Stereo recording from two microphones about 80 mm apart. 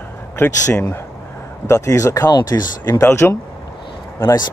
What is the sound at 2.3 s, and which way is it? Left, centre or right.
Speech, left.